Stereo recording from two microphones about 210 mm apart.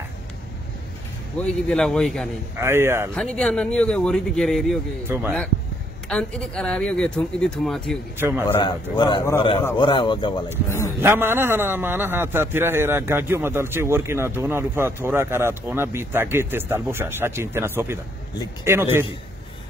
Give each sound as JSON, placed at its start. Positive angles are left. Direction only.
{"t": 1.4, "sound": "speech", "side_deg": 5}
{"t": 2.6, "sound": "a man's voice", "side_deg": -10}
{"t": 3.2, "sound": "speech", "side_deg": 5}
{"t": 6.0, "sound": "speech", "side_deg": 5}
{"t": 8.2, "sound": "a man's voice", "side_deg": -10}
{"t": 8.5, "sound": "a man's voice", "side_deg": 25}
{"t": 11.0, "sound": "a man's voice", "side_deg": -10}